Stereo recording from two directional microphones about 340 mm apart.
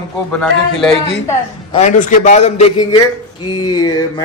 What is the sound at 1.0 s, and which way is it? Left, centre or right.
A man's voice, centre.